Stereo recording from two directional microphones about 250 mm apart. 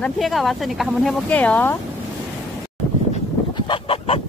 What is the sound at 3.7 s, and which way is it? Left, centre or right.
Fowl, left.